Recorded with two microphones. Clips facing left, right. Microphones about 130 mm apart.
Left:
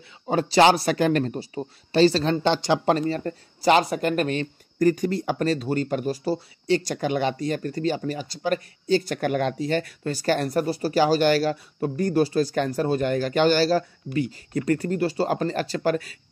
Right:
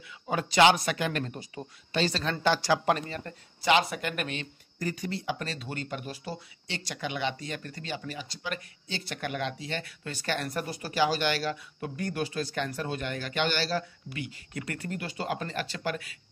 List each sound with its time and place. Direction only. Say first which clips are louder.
0.3 s speech: left 5 dB; 35° left (ahead or behind)
2.3 s speech: left 4 dB; 25° left (ahead or behind); by 16.2 s 40° left (ahead or behind)